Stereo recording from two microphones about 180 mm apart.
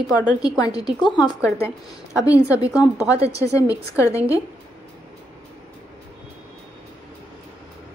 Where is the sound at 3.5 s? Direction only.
15° left (ahead or behind).